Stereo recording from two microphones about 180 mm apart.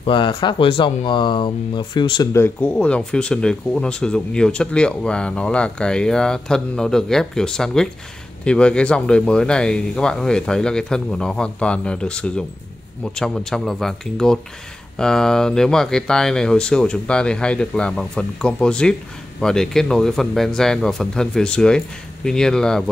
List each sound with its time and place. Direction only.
0.0 s speech: 25° left (ahead or behind)
2.4 s speech: 10° left (ahead or behind)